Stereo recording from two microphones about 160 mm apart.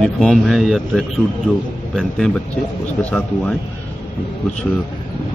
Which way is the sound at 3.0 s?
5° left (ahead or behind).